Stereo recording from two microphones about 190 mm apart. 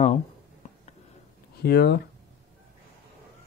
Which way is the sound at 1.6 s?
60° left (ahead or behind).